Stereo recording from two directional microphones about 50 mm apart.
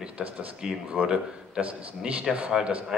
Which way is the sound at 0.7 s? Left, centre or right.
Right.